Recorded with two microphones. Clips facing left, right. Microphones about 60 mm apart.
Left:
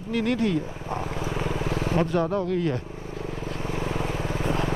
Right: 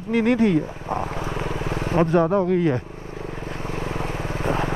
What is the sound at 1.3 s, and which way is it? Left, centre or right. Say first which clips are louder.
Vehicle: right 1 dB; centre.